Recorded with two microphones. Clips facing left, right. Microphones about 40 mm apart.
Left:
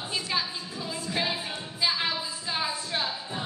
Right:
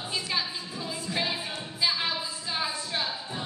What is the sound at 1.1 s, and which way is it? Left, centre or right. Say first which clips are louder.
Music: left 1 dB; centre.